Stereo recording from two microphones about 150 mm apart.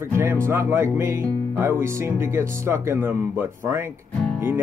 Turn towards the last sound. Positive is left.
turn(degrees=-15)  # may be behind; listen again after turning